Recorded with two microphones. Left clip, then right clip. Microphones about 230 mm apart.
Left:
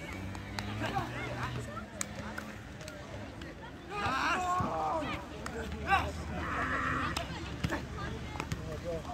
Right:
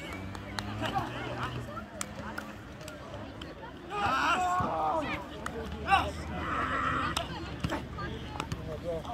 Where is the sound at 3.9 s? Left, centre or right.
Centre.